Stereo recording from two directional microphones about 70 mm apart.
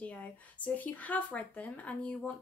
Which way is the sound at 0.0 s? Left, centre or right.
Left.